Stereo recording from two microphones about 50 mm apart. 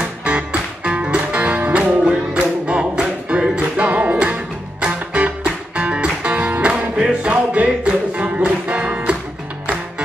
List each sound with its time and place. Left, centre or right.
0.2 s music: right